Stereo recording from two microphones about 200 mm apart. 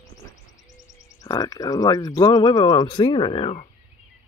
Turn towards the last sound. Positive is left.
turn(degrees=25)  # may be behind; listen again after turning